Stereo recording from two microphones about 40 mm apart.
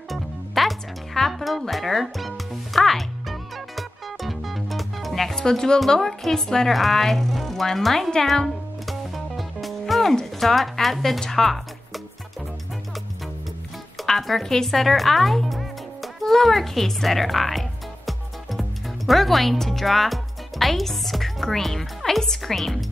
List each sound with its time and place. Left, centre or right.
0.1 s music: centre
5.3 s speech: centre
5.9 s a woman's voice: centre
8.8 s music: centre
10.4 s speech: centre
11.1 s music: centre
14.0 s speech: centre